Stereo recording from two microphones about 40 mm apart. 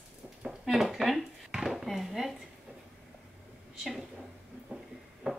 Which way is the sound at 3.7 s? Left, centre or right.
Centre.